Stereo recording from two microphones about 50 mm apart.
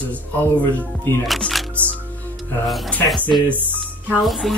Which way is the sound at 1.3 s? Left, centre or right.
Centre.